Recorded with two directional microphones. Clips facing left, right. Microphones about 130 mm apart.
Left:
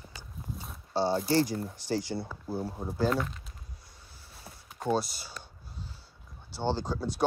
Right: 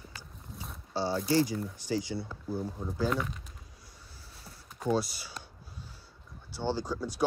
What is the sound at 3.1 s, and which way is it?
Speech, centre (ahead or behind).